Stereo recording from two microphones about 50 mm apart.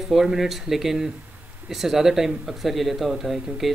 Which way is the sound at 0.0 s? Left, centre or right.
Centre.